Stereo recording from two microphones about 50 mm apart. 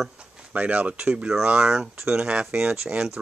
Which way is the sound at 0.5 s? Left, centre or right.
Right.